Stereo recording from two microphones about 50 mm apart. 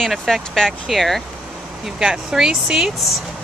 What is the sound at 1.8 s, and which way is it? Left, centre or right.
Speech, centre.